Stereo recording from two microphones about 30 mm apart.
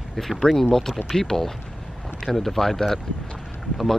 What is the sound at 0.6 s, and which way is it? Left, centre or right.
Speech, centre.